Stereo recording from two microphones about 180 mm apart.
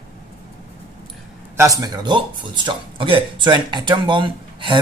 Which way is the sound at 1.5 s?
15° right (ahead or behind).